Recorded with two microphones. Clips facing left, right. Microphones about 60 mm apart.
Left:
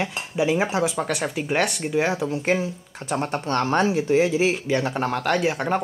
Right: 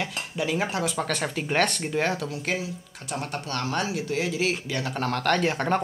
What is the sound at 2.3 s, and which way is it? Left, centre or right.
Speech, left.